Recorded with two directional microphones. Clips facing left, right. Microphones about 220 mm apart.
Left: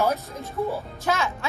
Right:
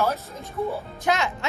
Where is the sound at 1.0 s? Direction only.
15° right (ahead or behind).